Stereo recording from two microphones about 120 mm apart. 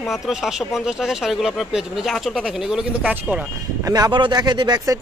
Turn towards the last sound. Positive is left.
turn(degrees=-30)  # may be behind; listen again after turning